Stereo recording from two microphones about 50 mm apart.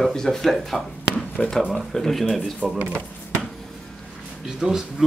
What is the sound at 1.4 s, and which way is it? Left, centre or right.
Speech, left.